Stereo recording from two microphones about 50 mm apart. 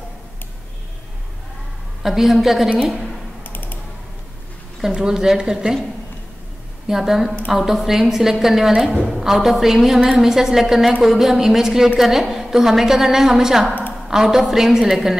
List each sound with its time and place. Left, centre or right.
2.0 s a woman's voice: centre
3.4 s typing: left
4.9 s a woman's voice: centre
6.9 s a woman's voice: centre